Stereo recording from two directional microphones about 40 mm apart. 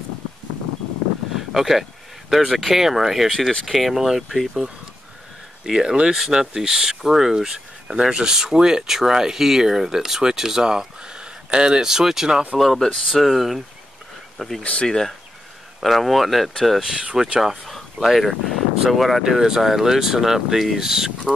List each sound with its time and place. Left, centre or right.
1.3 s speech: centre
5.7 s speech: centre
6.1 s speech: centre
13.1 s speech: centre
14.6 s speech: left
15.8 s speech: centre
17.0 s speech: centre
18.0 s speech: centre
19.2 s speech: centre